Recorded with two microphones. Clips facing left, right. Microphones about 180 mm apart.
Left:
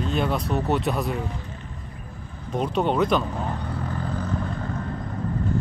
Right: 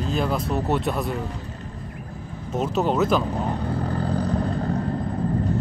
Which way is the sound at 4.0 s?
35° right (ahead or behind).